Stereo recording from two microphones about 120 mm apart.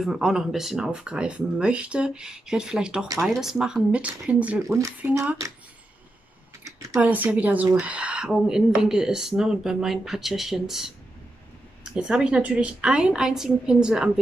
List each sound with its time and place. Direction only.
0.0 s a woman's voice: 5° right (ahead or behind)
7.0 s speech: 15° right (ahead or behind)
11.9 s a woman's voice: 5° right (ahead or behind)